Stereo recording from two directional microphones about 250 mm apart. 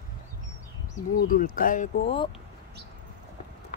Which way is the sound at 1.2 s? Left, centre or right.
Left.